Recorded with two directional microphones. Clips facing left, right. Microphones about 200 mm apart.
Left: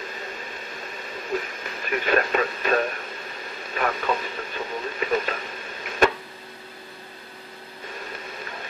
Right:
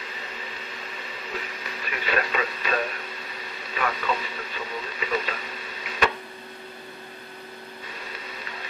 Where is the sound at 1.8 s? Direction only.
50° left (ahead or behind).